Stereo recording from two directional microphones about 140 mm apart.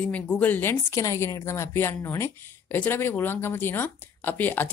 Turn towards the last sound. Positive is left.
turn(degrees=15)  # may be behind; listen again after turning